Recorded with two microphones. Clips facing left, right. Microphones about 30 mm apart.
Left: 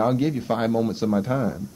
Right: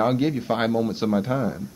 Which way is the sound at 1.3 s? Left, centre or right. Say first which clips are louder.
Even; centre.